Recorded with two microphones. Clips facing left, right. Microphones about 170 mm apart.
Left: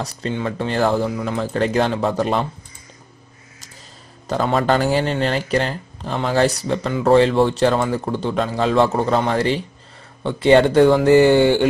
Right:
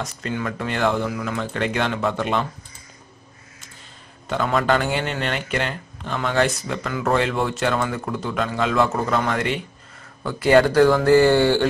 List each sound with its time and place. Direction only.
0.0 s speech: 35° left (ahead or behind)
4.3 s speech: 35° left (ahead or behind); by 11.6 s 15° left (ahead or behind)